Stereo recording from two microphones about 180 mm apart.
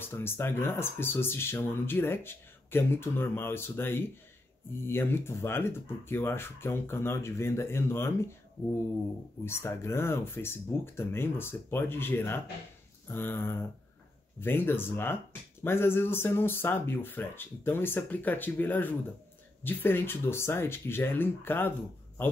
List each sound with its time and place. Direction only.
0.0 s speech: 10° left (ahead or behind)
9.4 s speech: 15° left (ahead or behind)